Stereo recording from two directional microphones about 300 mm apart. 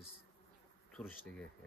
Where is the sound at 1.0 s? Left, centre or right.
Centre.